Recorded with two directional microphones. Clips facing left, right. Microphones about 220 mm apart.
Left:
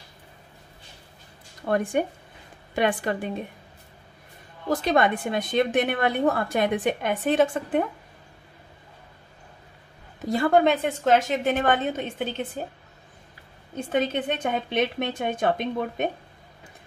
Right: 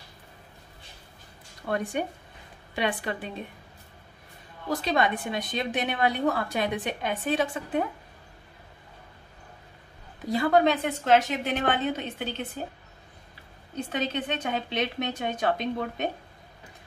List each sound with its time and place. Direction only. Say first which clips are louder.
1.7 s a woman's voice: left 5 dB; 50° left (ahead or behind)
4.6 s a woman's voice: left 4 dB; 50° left (ahead or behind)
10.3 s a woman's voice: left 2 dB; 50° left (ahead or behind)
13.9 s a woman's voice: left 5 dB; 50° left (ahead or behind)